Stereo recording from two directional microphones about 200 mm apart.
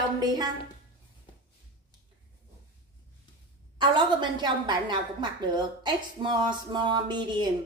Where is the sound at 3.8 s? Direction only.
25° right (ahead or behind).